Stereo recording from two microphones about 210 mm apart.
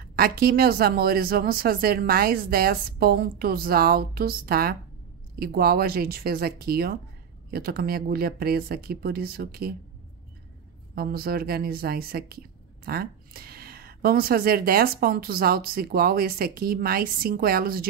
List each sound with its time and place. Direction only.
0.0 s speech: 45° right (ahead or behind)
11.0 s speech: 45° right (ahead or behind)